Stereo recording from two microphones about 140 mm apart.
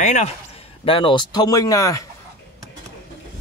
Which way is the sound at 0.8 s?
40° left (ahead or behind).